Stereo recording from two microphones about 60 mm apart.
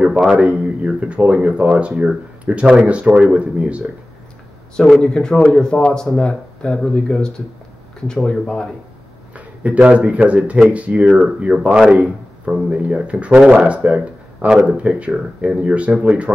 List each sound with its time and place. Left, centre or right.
0.4 s speech: right
4.8 s speech: centre
9.3 s speech: right